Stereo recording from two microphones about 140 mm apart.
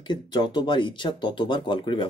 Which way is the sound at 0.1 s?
35° left (ahead or behind).